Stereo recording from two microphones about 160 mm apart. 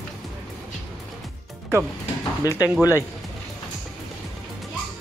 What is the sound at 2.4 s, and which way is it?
Speech, 20° left (ahead or behind).